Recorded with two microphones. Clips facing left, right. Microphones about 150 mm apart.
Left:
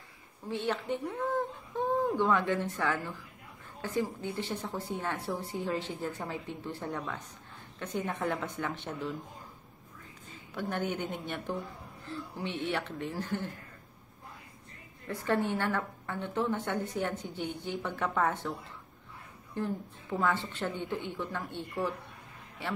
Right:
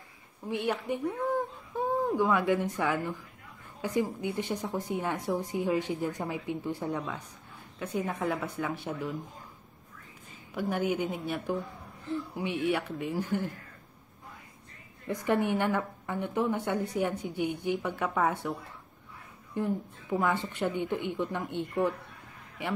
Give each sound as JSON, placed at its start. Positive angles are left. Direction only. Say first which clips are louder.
{"t": 0.5, "sound": "a woman's voice", "louder": "right 2 dB", "side_deg": -15}
{"t": 10.5, "sound": "a woman's voice", "louder": "right 4 dB", "side_deg": -10}
{"t": 15.0, "sound": "a woman's voice", "louder": "right 3 dB", "side_deg": -15}
{"t": 19.5, "sound": "a woman's voice", "louder": "right 3 dB", "side_deg": -15}